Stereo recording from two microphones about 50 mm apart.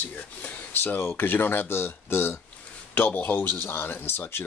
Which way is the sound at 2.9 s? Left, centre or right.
Left.